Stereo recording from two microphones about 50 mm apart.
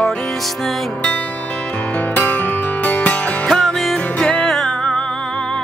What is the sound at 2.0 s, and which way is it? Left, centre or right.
Music, left.